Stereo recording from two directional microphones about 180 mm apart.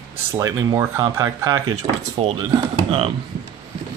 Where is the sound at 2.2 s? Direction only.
35° right (ahead or behind).